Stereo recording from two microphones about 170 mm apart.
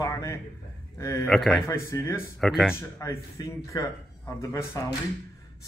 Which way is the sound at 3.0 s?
20° left (ahead or behind).